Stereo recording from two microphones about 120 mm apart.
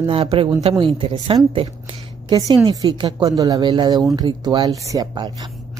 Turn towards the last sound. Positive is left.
turn(degrees=-35)  # may be behind; listen again after turning